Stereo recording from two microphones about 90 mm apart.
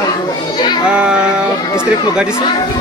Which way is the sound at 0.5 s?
55° left (ahead or behind).